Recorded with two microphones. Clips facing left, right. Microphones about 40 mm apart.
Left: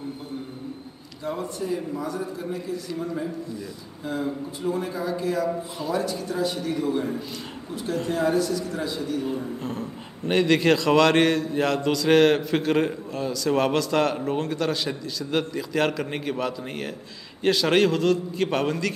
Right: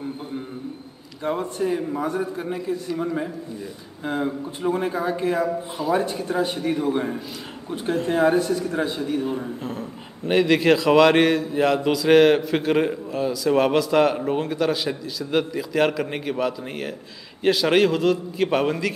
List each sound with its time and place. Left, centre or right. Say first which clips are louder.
1.2 s a man's voice: right 5 dB; right
9.2 s a man's voice: right 2 dB; centre
9.6 s a man's voice: even; centre